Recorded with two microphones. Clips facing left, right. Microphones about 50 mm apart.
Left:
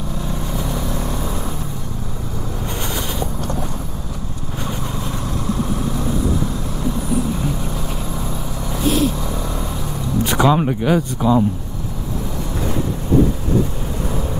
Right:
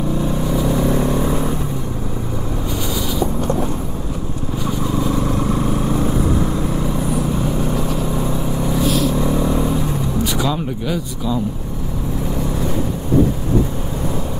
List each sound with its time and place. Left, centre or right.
0.7 s vehicle: right
5.2 s vehicle: right
7.7 s vehicle: right
8.8 s vehicle: left
9.1 s vehicle: centre
10.2 s a sound: left
10.5 s speech: left